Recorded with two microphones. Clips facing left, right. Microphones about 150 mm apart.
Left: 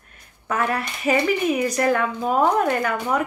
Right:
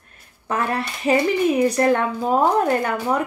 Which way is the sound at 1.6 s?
30° right (ahead or behind).